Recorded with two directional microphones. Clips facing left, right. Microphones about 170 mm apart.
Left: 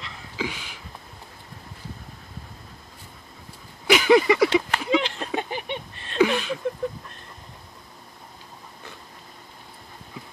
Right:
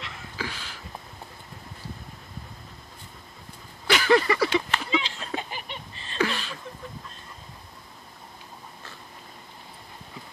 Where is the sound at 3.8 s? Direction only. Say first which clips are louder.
Left 4 dB; 15° left (ahead or behind).